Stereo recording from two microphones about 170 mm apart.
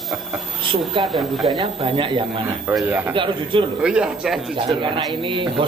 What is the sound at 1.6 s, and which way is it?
Speech, 30° right (ahead or behind).